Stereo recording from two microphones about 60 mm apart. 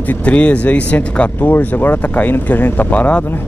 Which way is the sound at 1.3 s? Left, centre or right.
Left.